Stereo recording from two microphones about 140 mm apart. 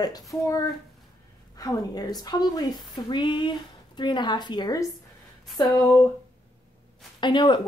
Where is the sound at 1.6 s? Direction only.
25° left (ahead or behind).